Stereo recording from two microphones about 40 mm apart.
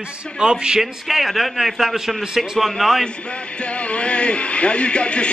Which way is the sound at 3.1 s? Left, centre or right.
Left.